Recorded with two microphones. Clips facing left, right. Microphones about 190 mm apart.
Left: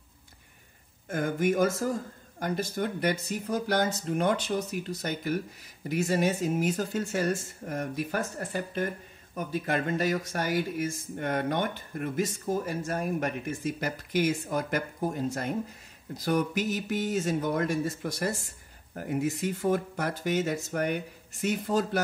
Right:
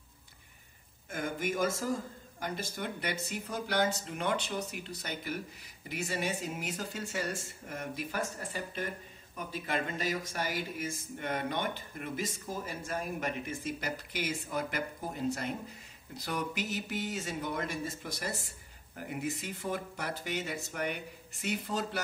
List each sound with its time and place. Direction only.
1.0 s speech: 45° left (ahead or behind)